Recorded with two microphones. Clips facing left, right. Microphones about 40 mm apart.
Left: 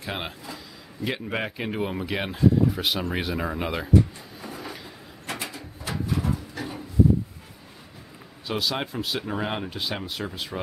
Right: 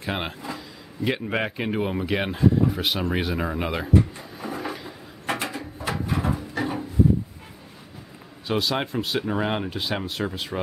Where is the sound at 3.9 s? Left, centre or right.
Centre.